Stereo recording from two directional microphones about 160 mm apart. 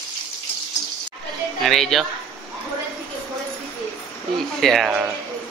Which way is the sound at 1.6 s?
Centre (ahead or behind).